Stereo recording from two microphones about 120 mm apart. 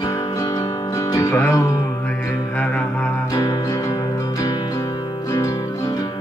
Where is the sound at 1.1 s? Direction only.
25° left (ahead or behind).